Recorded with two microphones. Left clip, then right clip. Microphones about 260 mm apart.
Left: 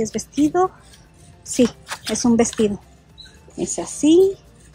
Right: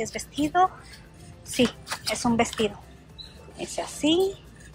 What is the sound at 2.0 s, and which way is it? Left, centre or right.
A woman's voice, left.